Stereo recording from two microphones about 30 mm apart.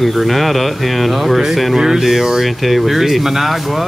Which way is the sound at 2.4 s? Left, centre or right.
Centre.